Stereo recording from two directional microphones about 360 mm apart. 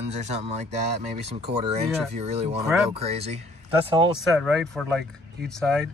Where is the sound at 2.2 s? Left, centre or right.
Centre.